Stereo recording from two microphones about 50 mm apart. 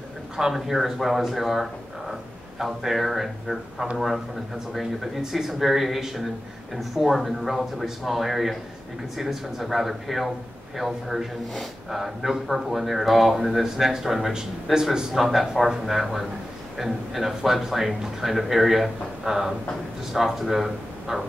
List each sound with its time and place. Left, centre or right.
0.4 s a man's voice: centre